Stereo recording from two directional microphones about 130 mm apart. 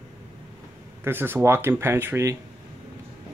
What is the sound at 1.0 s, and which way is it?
Speech, 15° right (ahead or behind).